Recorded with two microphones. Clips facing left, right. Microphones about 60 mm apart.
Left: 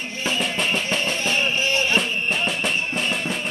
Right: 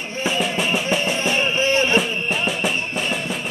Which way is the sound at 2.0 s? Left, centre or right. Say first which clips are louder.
Right 2 dB; centre.